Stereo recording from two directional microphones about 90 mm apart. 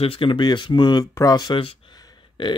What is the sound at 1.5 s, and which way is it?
Speech, 90° left.